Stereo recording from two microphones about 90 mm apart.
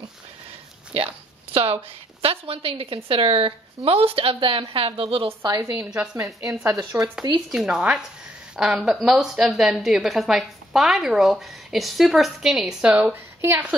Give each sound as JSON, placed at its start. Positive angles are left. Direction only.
{"t": 1.5, "sound": "a woman's voice", "side_deg": -90}
{"t": 5.5, "sound": "a woman's voice", "side_deg": -35}
{"t": 6.9, "sound": "a woman's voice", "side_deg": -20}
{"t": 7.4, "sound": "a woman's voice", "side_deg": -10}
{"t": 12.9, "sound": "a woman's voice", "side_deg": -20}